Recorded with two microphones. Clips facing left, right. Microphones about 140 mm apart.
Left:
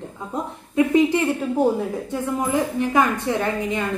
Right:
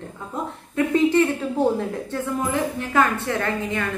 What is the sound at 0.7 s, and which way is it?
A woman's voice, 15° left (ahead or behind).